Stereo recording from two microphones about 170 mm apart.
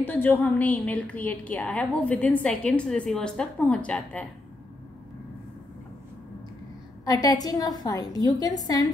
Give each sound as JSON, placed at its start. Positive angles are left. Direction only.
{"t": 0.0, "sound": "a woman's voice", "side_deg": 10}
{"t": 7.1, "sound": "a woman's voice", "side_deg": 20}